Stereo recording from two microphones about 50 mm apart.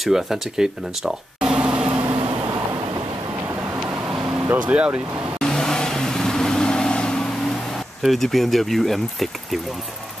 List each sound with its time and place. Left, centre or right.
0.0 s a sound: centre
4.1 s vehicle: centre
4.6 s speech: right
5.4 s vehicle: centre
8.0 s speech: centre